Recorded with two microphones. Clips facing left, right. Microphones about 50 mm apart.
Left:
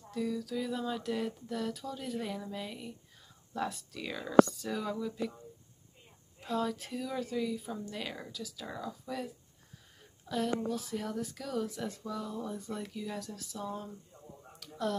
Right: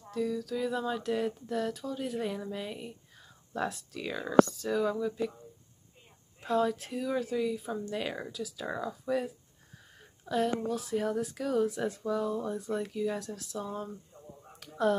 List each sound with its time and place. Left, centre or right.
0.1 s speech: centre
3.6 s speech: centre
6.4 s speech: centre
14.6 s a sound: right